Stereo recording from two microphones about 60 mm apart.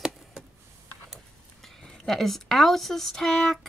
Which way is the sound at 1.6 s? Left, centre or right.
Centre.